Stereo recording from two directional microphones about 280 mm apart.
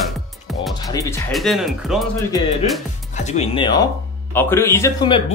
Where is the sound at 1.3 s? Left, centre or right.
Centre.